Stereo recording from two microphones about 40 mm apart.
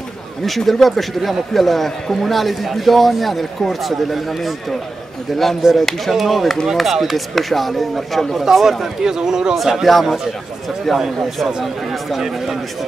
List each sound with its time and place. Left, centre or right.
0.6 s a man's voice: centre
8.6 s a man's voice: centre